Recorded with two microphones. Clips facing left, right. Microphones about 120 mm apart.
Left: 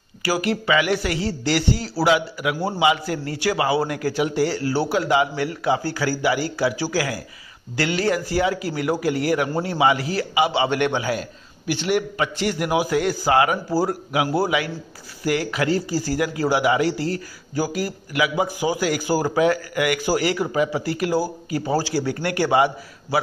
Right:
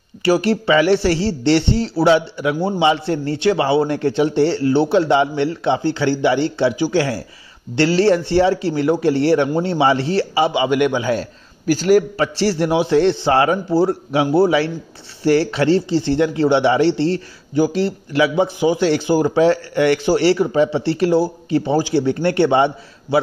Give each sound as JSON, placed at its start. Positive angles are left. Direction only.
{"t": 0.2, "sound": "a man's voice", "side_deg": -30}
{"t": 10.5, "sound": "a man's voice", "side_deg": -20}
{"t": 11.6, "sound": "a man's voice", "side_deg": -40}